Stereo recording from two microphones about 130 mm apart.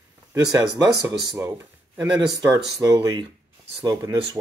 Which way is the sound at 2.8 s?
30° right (ahead or behind).